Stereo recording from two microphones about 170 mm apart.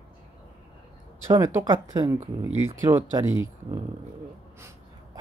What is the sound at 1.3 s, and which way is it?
Speech, 20° right (ahead or behind).